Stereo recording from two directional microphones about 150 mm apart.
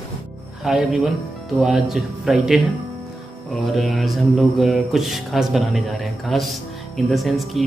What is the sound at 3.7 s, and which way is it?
Speech, centre (ahead or behind).